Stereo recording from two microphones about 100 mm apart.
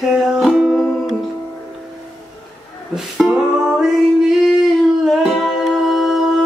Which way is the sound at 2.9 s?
5° right (ahead or behind).